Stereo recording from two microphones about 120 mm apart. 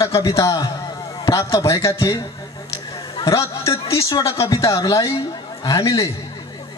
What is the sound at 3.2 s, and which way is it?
Speech, 25° left (ahead or behind).